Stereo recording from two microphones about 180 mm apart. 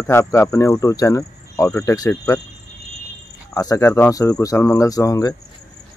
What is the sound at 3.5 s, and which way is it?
Speech, 20° left (ahead or behind).